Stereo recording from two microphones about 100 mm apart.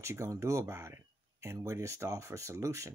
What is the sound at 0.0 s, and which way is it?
Speech, 30° right (ahead or behind).